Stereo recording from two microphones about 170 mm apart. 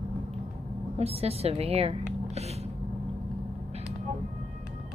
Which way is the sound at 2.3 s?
40° right (ahead or behind).